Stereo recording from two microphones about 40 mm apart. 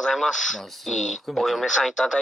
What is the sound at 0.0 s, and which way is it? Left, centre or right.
Speech, centre.